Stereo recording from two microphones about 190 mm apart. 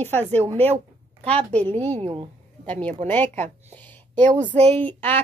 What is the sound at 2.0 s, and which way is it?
Speech, 30° right (ahead or behind).